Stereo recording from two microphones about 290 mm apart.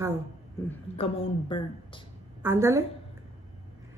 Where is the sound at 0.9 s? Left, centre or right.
Centre.